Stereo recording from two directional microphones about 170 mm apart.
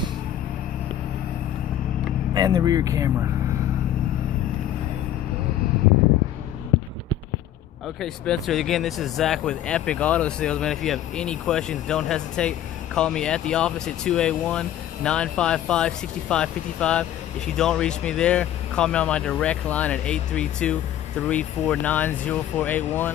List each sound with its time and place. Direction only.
2.3 s speech: 25° right (ahead or behind)
8.0 s speech: centre (ahead or behind)